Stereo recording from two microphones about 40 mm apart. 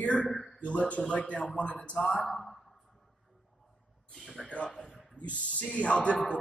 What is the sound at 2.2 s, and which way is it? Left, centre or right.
Speech, centre.